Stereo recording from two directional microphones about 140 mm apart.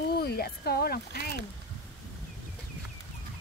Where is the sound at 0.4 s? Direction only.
90° left.